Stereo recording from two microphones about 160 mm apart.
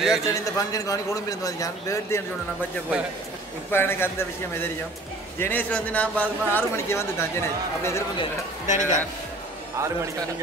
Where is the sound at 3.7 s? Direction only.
15° left (ahead or behind).